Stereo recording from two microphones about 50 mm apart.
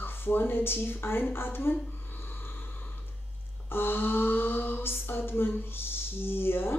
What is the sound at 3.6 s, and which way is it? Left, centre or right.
Speech, left.